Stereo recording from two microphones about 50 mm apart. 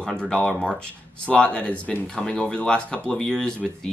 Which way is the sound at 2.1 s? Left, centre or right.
Centre.